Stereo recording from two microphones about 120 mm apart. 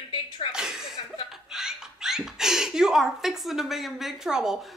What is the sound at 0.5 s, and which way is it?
Speech, 5° right (ahead or behind).